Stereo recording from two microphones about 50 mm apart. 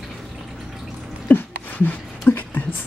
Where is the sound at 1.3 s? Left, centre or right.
Left.